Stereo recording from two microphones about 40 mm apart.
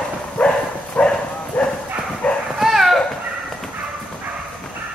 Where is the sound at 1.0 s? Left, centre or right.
Left.